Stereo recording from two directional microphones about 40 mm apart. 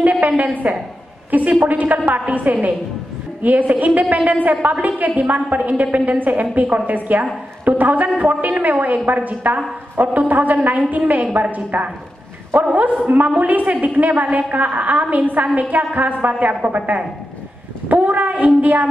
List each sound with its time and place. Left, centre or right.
0.0 s a sound: right
0.4 s a woman's voice: right
8.7 s a woman's voice: right
9.0 s a woman's voice: right